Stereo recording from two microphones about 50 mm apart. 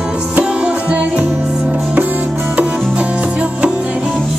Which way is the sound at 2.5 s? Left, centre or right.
Right.